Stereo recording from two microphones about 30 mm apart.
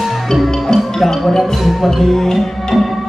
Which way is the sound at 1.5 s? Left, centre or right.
Centre.